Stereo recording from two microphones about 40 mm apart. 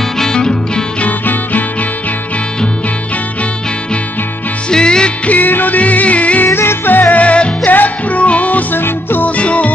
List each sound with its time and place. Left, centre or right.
0.2 s music: centre
1.0 s music: left
4.6 s music: left
5.2 s music: left
6.4 s music: left
6.9 s music: left
7.2 s music: left
7.6 s music: left
8.7 s music: left
9.2 s music: left